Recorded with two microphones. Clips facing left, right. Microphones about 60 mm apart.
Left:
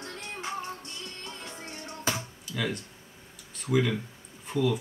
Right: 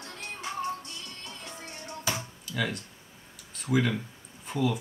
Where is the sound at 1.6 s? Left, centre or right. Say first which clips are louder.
Left 2 dB; left.